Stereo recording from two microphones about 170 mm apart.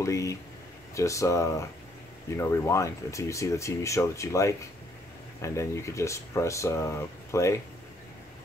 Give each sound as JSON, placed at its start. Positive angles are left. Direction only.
{"t": 0.0, "sound": "speech", "side_deg": 15}